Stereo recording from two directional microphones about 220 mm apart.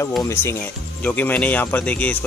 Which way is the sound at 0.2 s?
10° left (ahead or behind).